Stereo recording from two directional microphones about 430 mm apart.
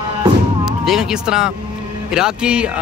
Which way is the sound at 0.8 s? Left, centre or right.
Centre.